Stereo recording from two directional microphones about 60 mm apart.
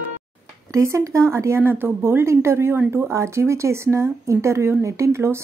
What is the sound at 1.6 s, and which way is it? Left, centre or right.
Speech, right.